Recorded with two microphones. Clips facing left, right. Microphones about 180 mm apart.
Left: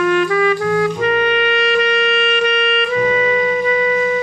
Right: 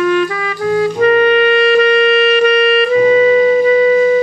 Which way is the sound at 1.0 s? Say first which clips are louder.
Right 6 dB; 40° right (ahead or behind).